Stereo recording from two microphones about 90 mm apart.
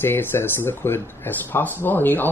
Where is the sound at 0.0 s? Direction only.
25° left (ahead or behind).